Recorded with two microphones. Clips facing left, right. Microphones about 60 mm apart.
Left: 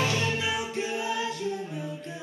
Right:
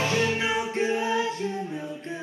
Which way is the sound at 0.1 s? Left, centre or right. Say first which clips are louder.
Right 4 dB; right.